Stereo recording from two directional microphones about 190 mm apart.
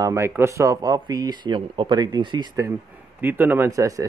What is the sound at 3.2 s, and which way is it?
Speech, 10° right (ahead or behind).